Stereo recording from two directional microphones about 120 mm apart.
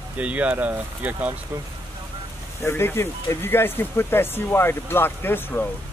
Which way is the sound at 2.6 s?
20° left (ahead or behind).